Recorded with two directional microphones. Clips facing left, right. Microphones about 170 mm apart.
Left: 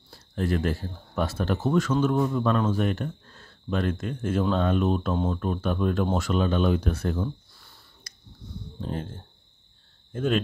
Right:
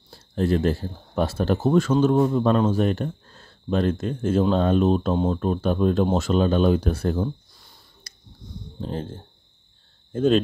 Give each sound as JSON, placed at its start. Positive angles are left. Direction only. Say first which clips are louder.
{"t": 0.1, "sound": "speech", "louder": "right 5 dB", "side_deg": -30}
{"t": 7.2, "sound": "a sound", "louder": "right 3 dB", "side_deg": -15}
{"t": 8.1, "sound": "finger snapping", "louder": "right 1 dB", "side_deg": -30}
{"t": 8.9, "sound": "speech", "louder": "right 4 dB", "side_deg": -30}